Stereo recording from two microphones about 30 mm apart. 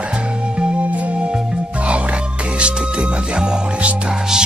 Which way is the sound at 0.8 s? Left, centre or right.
Right.